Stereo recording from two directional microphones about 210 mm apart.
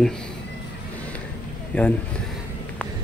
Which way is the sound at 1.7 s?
10° left (ahead or behind).